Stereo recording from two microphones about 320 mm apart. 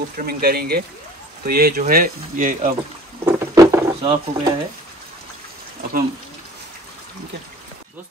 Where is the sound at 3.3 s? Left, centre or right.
Centre.